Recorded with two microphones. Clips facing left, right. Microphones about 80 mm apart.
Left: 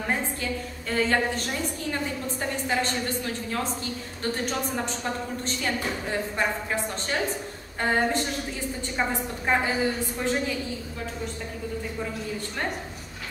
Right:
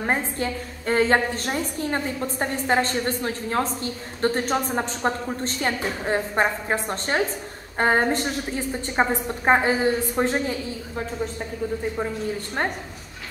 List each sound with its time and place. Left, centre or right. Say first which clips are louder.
0.0 s a woman's voice: right 4 dB; right